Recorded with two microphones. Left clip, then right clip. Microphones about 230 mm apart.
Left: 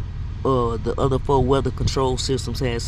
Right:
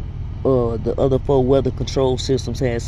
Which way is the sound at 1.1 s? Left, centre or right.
Left.